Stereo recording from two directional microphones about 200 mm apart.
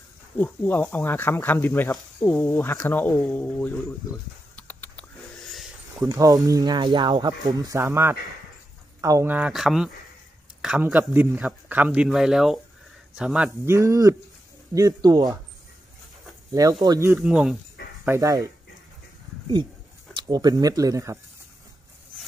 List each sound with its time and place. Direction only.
0.4 s speech: 10° left (ahead or behind)
4.6 s a sound: 10° left (ahead or behind)
5.9 s a man's voice: 15° right (ahead or behind)
16.8 s speech: 15° right (ahead or behind)
18.0 s speech: 15° right (ahead or behind)
20.2 s speech: 20° right (ahead or behind)